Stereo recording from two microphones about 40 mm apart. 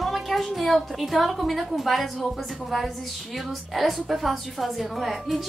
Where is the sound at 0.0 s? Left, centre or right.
Centre.